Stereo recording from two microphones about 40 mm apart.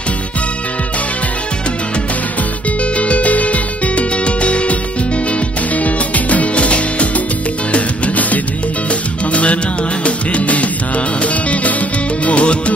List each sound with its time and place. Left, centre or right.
3.0 s music: left
5.8 s music: left
12.3 s music: left